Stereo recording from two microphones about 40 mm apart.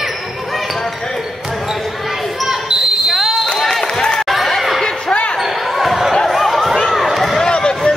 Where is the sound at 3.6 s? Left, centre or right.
Centre.